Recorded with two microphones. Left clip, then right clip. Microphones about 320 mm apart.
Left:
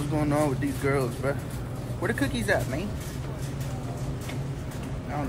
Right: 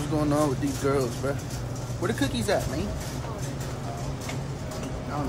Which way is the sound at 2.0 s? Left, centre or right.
Centre.